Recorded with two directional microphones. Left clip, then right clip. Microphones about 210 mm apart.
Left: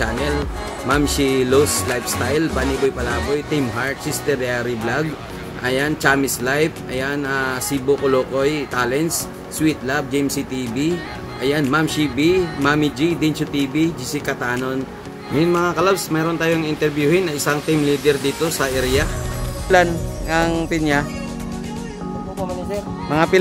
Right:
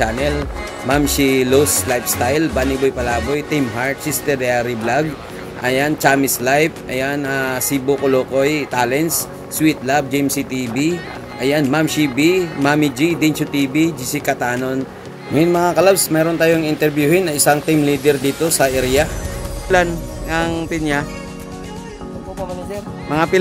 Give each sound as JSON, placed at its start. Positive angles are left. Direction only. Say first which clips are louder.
{"t": 0.8, "sound": "speech", "louder": "right 2 dB", "side_deg": -15}
{"t": 11.4, "sound": "a man's voice", "louder": "right 2 dB", "side_deg": -15}
{"t": 19.7, "sound": "speech", "louder": "even", "side_deg": 0}
{"t": 23.0, "sound": "speech", "louder": "even", "side_deg": -5}